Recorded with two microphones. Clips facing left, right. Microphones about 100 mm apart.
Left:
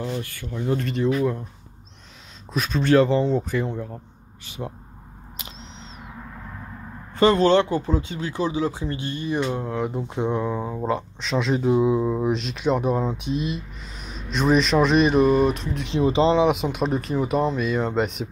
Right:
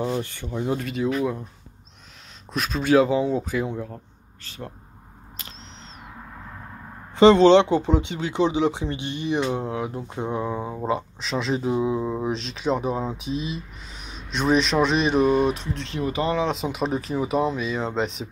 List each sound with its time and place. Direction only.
0.0 s speech: 25° right (ahead or behind)
0.8 s speech: 5° right (ahead or behind)
2.5 s speech: centre (ahead or behind)
4.5 s speech: 15° left (ahead or behind)
7.2 s speech: 25° right (ahead or behind)
9.8 s speech: centre (ahead or behind)
15.8 s speech: 20° left (ahead or behind)
16.6 s speech: centre (ahead or behind)